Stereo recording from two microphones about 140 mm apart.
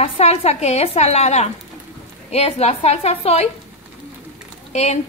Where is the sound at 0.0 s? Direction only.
50° left (ahead or behind).